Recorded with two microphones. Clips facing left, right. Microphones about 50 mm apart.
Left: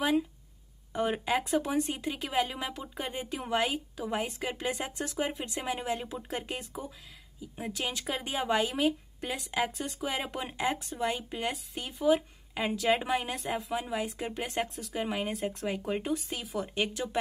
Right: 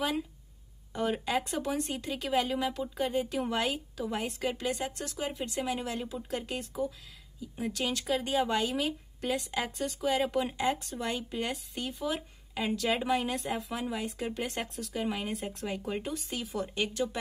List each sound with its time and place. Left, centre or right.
0.9 s a woman's voice: centre
4.6 s speech: left
5.3 s a woman's voice: centre
6.6 s a woman's voice: centre